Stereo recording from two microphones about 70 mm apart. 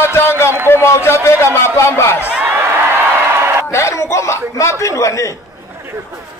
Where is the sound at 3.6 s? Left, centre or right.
Left.